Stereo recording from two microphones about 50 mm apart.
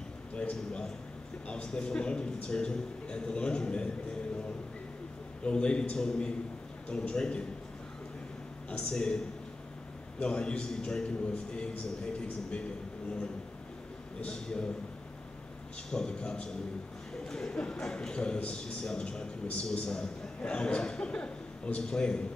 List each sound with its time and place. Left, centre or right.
0.3 s speech: centre
5.4 s speech: centre
8.6 s speech: centre
14.2 s speech: centre
15.9 s speech: centre